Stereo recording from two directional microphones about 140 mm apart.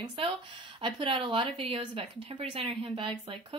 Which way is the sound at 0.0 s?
40° right (ahead or behind).